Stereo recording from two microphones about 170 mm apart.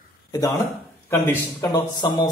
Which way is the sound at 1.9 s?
25° left (ahead or behind).